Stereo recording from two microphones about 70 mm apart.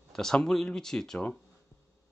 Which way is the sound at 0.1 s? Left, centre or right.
Centre.